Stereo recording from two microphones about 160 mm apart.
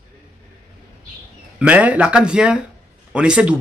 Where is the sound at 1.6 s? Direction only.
10° right (ahead or behind).